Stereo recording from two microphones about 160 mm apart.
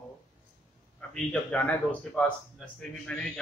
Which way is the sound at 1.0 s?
5° left (ahead or behind).